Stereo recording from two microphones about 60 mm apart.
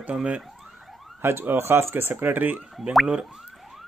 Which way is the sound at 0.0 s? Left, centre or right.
Right.